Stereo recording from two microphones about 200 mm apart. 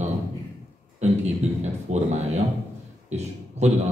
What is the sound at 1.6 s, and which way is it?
Speech, 35° right (ahead or behind).